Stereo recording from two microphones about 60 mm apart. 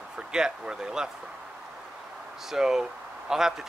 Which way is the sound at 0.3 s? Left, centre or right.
Centre.